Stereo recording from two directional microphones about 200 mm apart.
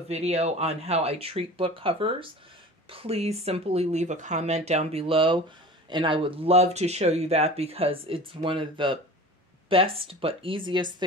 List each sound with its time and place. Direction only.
0.1 s speech: 30° right (ahead or behind)